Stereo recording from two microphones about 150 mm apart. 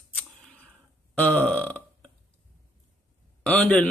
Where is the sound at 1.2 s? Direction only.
10° left (ahead or behind).